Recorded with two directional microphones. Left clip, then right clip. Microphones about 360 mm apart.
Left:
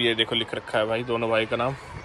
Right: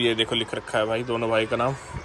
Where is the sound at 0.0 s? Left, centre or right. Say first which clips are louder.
Even; centre.